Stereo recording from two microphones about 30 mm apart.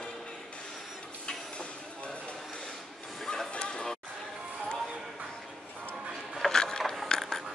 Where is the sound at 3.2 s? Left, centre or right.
Centre.